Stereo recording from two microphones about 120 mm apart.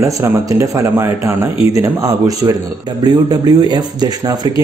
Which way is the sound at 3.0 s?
35° right (ahead or behind).